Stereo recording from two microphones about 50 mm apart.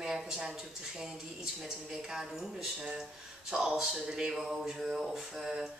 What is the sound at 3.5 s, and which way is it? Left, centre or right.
Speech, centre.